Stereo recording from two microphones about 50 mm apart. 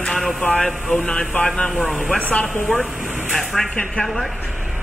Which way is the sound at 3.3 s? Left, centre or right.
Centre.